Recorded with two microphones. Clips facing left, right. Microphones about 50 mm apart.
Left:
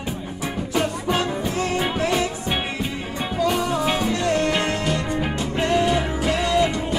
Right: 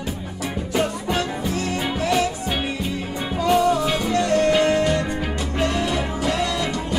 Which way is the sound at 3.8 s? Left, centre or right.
Left.